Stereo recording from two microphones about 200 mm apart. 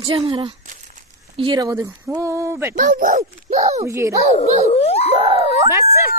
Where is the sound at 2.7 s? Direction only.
45° right (ahead or behind).